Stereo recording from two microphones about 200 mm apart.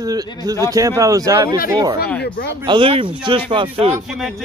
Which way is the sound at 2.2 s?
55° left (ahead or behind).